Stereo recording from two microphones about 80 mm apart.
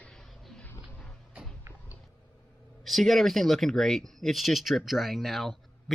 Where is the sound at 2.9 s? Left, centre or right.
Centre.